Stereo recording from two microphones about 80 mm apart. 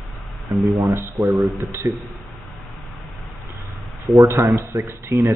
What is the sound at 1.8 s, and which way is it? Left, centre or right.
Speech, right.